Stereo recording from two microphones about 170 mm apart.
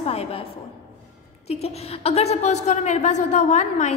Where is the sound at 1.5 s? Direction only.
40° left (ahead or behind).